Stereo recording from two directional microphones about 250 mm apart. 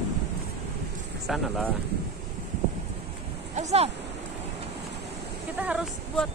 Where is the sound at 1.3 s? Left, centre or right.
Centre.